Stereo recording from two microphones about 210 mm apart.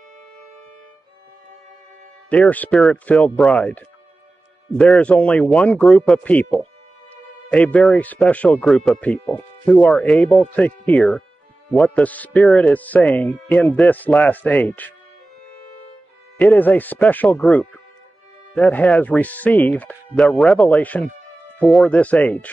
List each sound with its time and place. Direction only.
2.2 s speech: 5° left (ahead or behind)
16.3 s speech: 10° left (ahead or behind)